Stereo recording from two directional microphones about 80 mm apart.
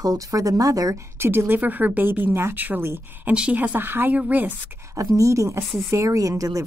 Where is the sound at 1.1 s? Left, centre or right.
Right.